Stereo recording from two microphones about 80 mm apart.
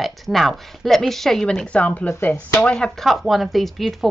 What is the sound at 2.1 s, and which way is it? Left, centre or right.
Speech, left.